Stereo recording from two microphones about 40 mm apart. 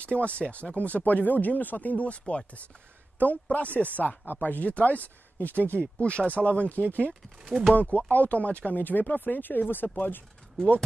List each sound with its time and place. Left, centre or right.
0.0 s speech: left
4.3 s speech: left